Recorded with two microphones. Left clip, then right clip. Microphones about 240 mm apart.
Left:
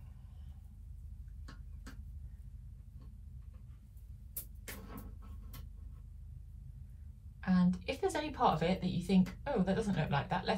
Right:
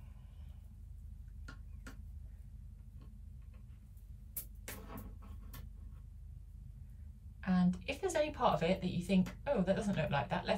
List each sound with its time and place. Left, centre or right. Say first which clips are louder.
7.3 s a woman's voice: left 2 dB; centre